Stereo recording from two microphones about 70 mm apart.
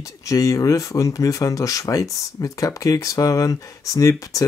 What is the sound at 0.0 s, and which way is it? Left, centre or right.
Speech, left.